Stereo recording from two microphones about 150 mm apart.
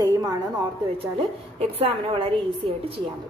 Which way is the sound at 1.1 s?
40° right (ahead or behind).